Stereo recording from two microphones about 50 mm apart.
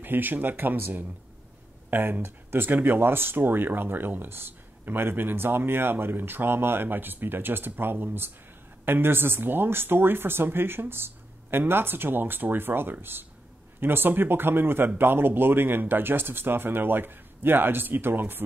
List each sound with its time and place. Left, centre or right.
0.0 s speech: right